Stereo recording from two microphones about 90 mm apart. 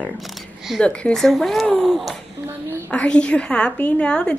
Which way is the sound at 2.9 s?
15° left (ahead or behind).